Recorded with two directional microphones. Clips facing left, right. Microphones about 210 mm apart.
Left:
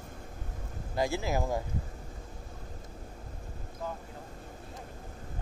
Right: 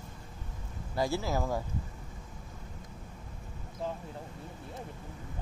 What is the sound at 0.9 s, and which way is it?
Speech, 15° left (ahead or behind).